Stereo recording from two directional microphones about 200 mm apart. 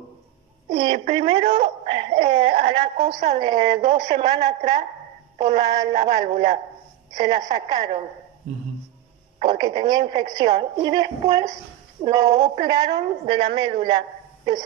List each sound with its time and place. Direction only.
0.7 s a sound: 25° right (ahead or behind)
1.1 s a woman's voice: 25° right (ahead or behind)
9.5 s a woman's voice: 20° right (ahead or behind)